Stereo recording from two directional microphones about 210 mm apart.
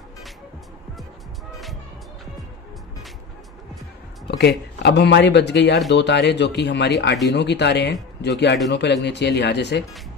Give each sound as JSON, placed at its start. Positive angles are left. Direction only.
{"t": 4.4, "sound": "speech", "side_deg": 50}